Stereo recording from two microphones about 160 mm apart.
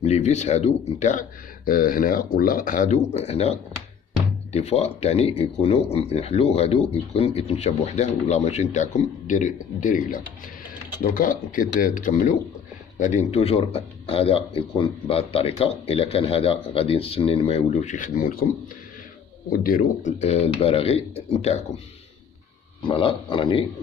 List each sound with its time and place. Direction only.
0.0 s speech: 45° left (ahead or behind)
1.7 s speech: 60° left (ahead or behind)
19.5 s speech: 65° left (ahead or behind); by 21.8 s 45° left (ahead or behind)
22.8 s speech: 30° left (ahead or behind)